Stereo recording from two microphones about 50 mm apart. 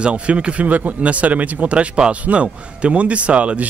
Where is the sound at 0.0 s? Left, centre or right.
Right.